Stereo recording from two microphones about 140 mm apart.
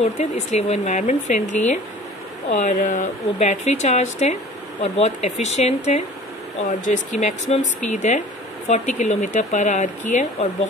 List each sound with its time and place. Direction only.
0.2 s speech: 55° left (ahead or behind)
2.6 s speech: 70° left (ahead or behind); by 6.0 s 50° left (ahead or behind)
6.6 s speech: 60° left (ahead or behind)